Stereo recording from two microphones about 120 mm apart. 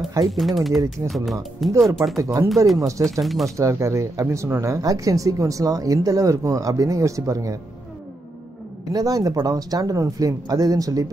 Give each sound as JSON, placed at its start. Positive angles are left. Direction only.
{"t": 0.3, "sound": "speech", "side_deg": 0}
{"t": 3.5, "sound": "speech", "side_deg": -25}
{"t": 8.9, "sound": "speech", "side_deg": -30}